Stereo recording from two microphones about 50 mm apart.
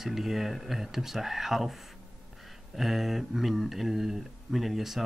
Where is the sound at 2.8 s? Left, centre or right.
Centre.